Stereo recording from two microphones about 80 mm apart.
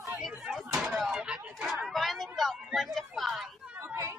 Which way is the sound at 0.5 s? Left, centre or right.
Centre.